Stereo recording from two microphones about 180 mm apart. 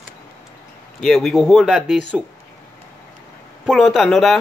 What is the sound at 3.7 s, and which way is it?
Speech, centre (ahead or behind).